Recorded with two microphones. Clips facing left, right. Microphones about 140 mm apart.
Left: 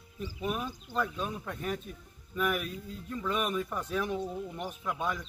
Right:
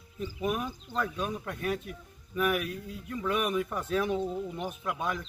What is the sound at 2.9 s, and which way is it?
Speech, 10° right (ahead or behind).